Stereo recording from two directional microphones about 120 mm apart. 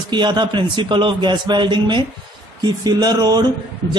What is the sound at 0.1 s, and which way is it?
A man's voice, 40° right (ahead or behind).